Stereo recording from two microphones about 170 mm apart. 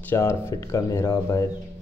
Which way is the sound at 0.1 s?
15° left (ahead or behind).